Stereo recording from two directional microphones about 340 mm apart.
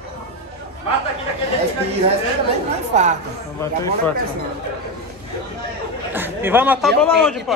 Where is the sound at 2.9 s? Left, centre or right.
Centre.